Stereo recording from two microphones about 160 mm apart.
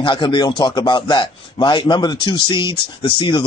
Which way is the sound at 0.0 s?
30° left (ahead or behind).